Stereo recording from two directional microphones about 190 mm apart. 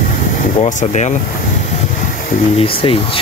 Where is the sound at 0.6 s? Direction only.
40° left (ahead or behind).